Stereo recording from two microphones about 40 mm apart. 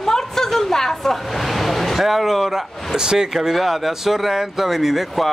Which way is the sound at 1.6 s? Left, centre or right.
Centre.